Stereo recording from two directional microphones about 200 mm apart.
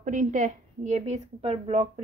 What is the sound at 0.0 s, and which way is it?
Speech, 40° right (ahead or behind).